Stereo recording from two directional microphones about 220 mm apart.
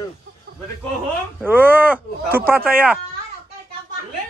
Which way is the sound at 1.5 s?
10° right (ahead or behind).